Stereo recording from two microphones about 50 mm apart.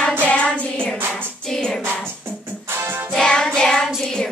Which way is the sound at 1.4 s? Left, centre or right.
Centre.